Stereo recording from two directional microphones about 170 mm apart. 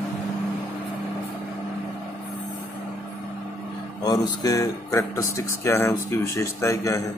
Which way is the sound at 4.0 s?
20° left (ahead or behind).